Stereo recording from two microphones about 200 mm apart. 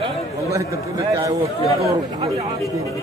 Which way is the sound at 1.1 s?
15° right (ahead or behind).